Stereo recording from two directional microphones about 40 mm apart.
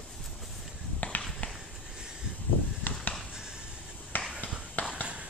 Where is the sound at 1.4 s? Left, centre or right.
Left.